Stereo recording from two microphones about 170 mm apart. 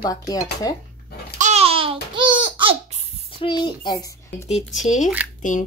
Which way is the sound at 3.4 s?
25° left (ahead or behind).